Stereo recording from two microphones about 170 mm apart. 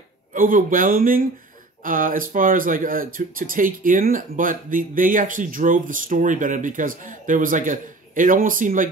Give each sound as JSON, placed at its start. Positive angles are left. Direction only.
{"t": 0.3, "sound": "speech", "side_deg": -50}